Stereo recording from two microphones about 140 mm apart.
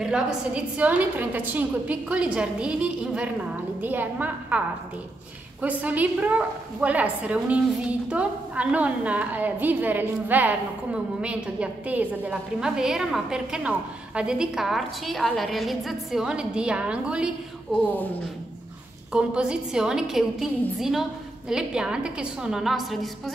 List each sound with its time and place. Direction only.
0.0 s a woman's voice: 5° right (ahead or behind)
19.1 s a woman's voice: 5° right (ahead or behind)
21.5 s a woman's voice: 5° right (ahead or behind)